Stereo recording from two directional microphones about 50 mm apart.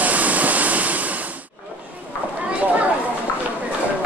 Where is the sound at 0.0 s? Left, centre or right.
Right.